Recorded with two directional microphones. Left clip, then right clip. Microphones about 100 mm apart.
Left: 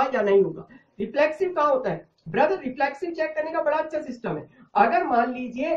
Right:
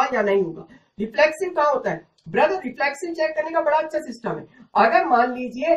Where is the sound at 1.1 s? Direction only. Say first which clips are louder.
Right 3 dB; 25° left (ahead or behind).